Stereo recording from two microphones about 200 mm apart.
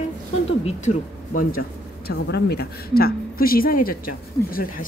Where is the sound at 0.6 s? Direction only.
40° left (ahead or behind).